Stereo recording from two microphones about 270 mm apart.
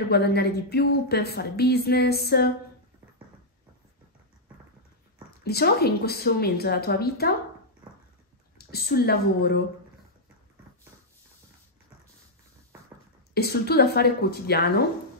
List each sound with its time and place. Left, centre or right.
0.1 s speech: left
5.4 s speech: left
8.5 s speech: left
13.3 s speech: left